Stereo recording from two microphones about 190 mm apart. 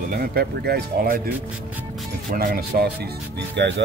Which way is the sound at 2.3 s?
50° right (ahead or behind).